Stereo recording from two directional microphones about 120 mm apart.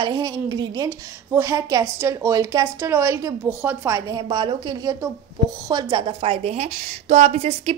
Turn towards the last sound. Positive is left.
turn(degrees=-60)  # may be behind; listen again after turning